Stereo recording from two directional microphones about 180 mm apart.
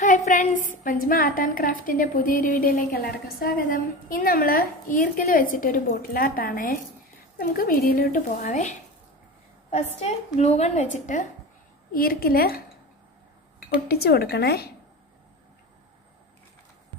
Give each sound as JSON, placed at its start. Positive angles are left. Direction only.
{"t": 0.0, "sound": "a woman's voice", "side_deg": 45}
{"t": 11.9, "sound": "speech", "side_deg": 55}
{"t": 13.8, "sound": "speech", "side_deg": 60}